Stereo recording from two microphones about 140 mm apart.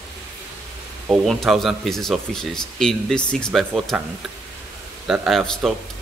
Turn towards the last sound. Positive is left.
turn(degrees=0)  # may be behind; listen again after turning